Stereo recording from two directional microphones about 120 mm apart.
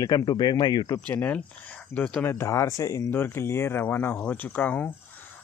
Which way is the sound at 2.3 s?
25° left (ahead or behind).